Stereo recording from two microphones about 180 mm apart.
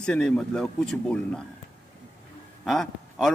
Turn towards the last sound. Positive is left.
turn(degrees=0)  # may be behind; listen again after turning